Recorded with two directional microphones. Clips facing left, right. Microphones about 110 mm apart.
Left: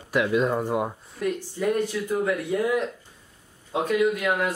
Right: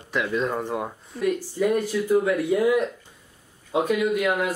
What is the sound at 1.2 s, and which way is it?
Speech, 5° right (ahead or behind).